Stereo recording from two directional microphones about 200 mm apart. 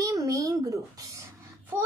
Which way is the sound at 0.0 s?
15° right (ahead or behind).